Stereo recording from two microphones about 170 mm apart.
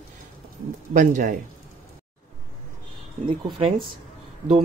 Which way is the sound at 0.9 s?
45° right (ahead or behind).